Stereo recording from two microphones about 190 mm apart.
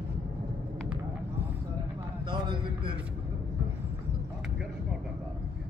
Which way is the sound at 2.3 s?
25° right (ahead or behind).